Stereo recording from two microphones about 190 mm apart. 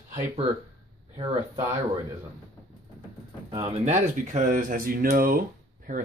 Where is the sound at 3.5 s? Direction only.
30° right (ahead or behind); by 6.0 s 50° right (ahead or behind).